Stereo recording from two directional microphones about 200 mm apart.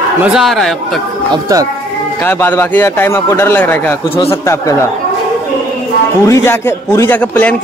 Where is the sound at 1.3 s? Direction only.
15° right (ahead or behind).